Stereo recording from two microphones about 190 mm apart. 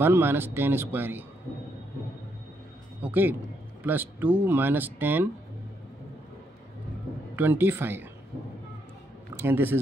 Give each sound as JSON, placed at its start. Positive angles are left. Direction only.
{"t": 0.0, "sound": "speech", "side_deg": -10}
{"t": 3.0, "sound": "a man's voice", "side_deg": -10}
{"t": 7.3, "sound": "speech", "side_deg": -10}
{"t": 9.4, "sound": "speech", "side_deg": -10}